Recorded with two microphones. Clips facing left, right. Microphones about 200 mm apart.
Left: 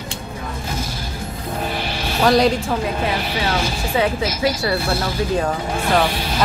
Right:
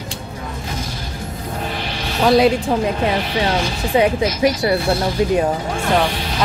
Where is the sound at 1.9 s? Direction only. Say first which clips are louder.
Right 2 dB; 5° left (ahead or behind).